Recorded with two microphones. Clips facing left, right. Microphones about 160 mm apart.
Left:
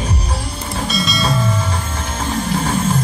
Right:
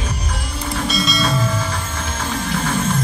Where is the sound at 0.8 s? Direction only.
Centre (ahead or behind).